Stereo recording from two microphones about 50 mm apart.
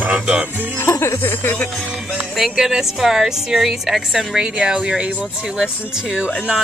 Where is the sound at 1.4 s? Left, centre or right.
Left.